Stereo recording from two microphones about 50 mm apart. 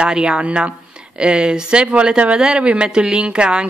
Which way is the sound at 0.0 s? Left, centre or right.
Centre.